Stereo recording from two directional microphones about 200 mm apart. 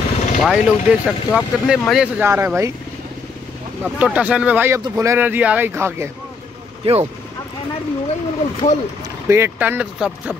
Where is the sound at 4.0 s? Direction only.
5° right (ahead or behind).